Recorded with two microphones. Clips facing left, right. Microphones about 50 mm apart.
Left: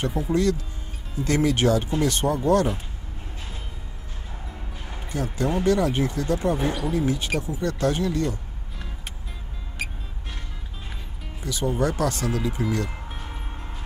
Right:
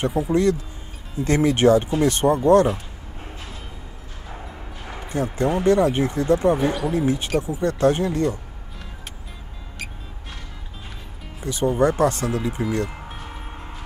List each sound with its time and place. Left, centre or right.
0.0 s speech: right
4.8 s speech: right
11.4 s speech: right
13.3 s vehicle: centre